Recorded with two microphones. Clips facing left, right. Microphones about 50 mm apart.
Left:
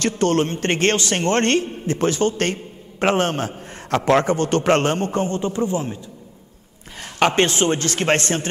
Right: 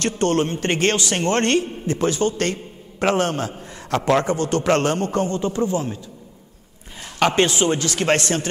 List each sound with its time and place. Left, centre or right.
0.3 s a man's voice: left
7.2 s a man's voice: left